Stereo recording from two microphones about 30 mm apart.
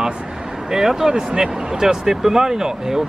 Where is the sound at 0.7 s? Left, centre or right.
Centre.